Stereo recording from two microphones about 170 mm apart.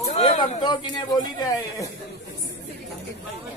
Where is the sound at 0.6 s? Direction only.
25° left (ahead or behind).